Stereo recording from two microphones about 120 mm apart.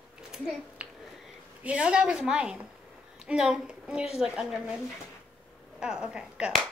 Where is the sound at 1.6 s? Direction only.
10° right (ahead or behind).